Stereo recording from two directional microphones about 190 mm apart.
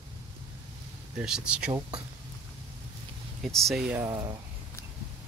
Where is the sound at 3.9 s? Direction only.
15° right (ahead or behind).